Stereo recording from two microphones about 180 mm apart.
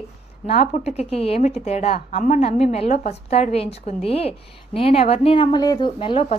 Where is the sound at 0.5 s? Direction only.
35° left (ahead or behind).